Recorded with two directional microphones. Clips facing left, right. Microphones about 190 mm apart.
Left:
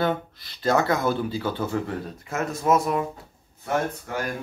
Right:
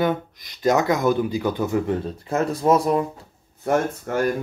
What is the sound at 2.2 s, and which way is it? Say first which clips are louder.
Speech: right 4 dB; 30° right (ahead or behind).